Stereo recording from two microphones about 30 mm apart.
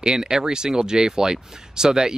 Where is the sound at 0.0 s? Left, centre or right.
Right.